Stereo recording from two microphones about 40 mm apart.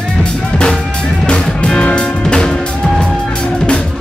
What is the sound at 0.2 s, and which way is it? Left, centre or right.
Drum, left.